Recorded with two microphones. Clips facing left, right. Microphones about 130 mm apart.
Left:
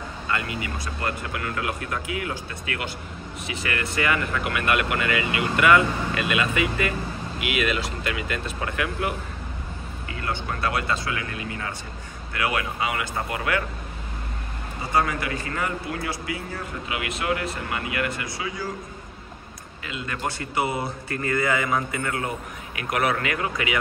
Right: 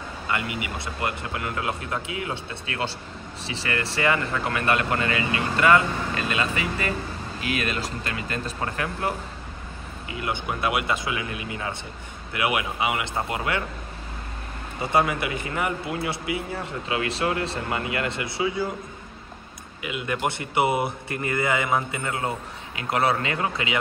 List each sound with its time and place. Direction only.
0.3 s speech: 20° right (ahead or behind)
10.1 s speech: 20° right (ahead or behind)
14.8 s speech: 25° right (ahead or behind)
19.8 s speech: 15° right (ahead or behind)